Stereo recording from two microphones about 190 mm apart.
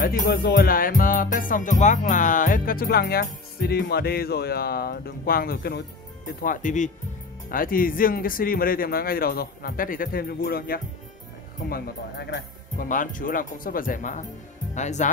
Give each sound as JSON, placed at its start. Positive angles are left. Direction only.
{"t": 0.0, "sound": "music", "side_deg": 50}
{"t": 6.4, "sound": "speech", "side_deg": 45}
{"t": 7.4, "sound": "music", "side_deg": 50}
{"t": 14.7, "sound": "speech", "side_deg": 40}